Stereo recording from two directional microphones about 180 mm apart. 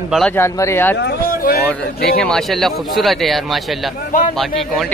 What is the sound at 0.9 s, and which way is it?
Speech, 70° left (ahead or behind).